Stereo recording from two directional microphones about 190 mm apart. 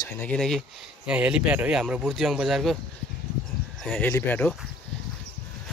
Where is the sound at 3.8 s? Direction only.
10° left (ahead or behind).